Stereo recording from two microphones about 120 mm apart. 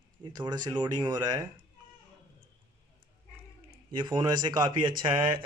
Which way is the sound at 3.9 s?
40° right (ahead or behind).